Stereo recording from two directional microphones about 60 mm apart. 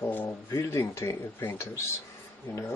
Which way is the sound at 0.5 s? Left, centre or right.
Left.